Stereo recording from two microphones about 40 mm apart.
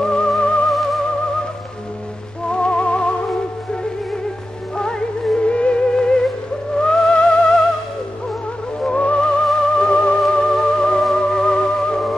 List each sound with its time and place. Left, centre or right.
0.0 s music: left
0.7 s music: centre
2.5 s music: left
4.7 s music: left
8.8 s music: left
9.5 s music: centre
10.4 s theremin: centre
11.1 s music: centre